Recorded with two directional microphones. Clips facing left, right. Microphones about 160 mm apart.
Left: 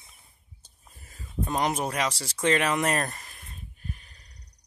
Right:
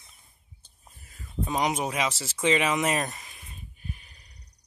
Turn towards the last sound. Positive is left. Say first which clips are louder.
# even
turn(degrees=0)  # may be behind; listen again after turning